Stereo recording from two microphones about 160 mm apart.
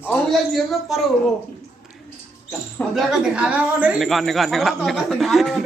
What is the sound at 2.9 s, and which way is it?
A man's voice, 5° right (ahead or behind).